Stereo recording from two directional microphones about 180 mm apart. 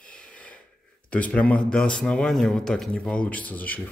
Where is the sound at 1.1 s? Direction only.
10° left (ahead or behind).